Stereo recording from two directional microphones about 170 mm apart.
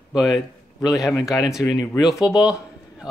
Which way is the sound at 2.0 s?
Centre (ahead or behind).